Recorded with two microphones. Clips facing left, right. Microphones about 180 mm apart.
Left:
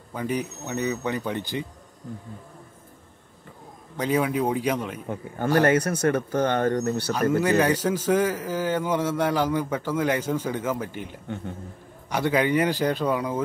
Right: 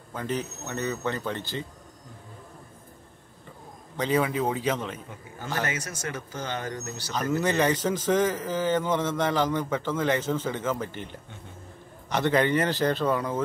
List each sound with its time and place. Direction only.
0.1 s a man's voice: 10° left (ahead or behind)
3.9 s a man's voice: 10° left (ahead or behind)
5.0 s speech: 55° left (ahead or behind)
7.3 s a man's voice: 5° left (ahead or behind)